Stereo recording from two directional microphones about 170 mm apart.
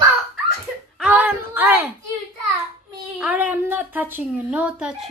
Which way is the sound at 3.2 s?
10° right (ahead or behind).